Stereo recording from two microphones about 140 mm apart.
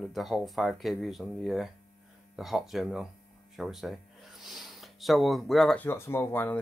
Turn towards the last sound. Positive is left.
turn(degrees=15)  # may be behind; listen again after turning